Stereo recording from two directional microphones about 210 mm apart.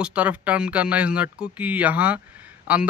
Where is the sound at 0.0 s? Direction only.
5° right (ahead or behind).